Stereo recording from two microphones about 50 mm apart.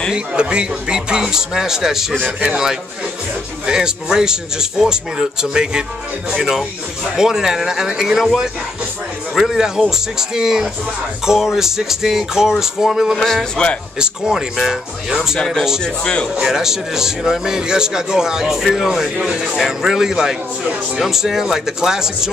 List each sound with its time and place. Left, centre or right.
0.1 s a man's voice: centre
13.2 s speech: centre
13.9 s a man's voice: centre
15.3 s speech: centre
16.3 s a man's voice: centre